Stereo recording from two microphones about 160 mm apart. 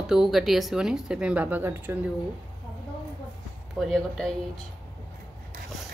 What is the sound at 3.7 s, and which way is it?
Speech, 5° left (ahead or behind).